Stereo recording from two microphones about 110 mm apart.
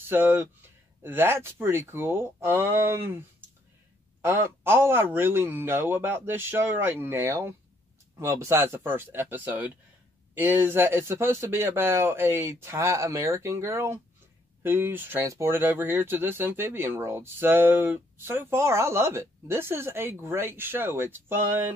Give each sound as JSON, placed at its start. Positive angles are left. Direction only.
{"t": 0.1, "sound": "speech", "side_deg": -20}